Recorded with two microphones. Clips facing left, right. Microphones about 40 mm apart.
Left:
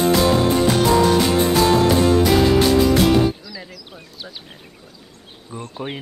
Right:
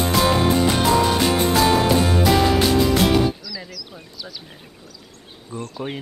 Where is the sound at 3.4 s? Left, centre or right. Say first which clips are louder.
Right 1 dB; left.